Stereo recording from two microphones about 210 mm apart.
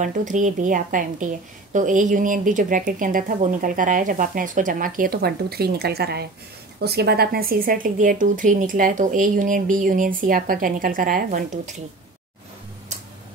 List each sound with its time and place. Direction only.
0.0 s a woman's voice: 35° right (ahead or behind)